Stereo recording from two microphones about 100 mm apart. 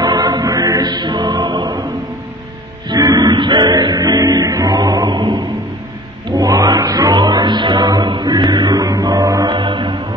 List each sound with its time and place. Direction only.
0.0 s music: 40° right (ahead or behind)
2.9 s music: 40° right (ahead or behind)
9.5 s mantra: 55° right (ahead or behind)